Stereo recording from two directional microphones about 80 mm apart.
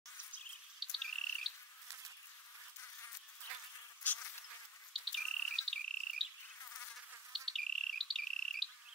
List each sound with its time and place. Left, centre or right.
0.7 s squawk: centre
2.8 s insect: left
4.0 s insect: left
4.9 s insect: centre
7.3 s insect: centre